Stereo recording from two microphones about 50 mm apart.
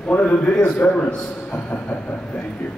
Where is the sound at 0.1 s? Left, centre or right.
Left.